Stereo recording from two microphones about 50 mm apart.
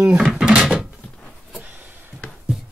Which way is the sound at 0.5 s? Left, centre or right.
Centre.